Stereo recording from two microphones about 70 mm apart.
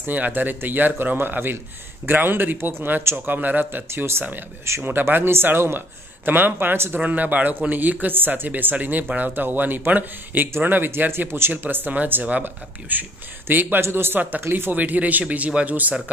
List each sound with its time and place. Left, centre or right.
0.0 s speech: right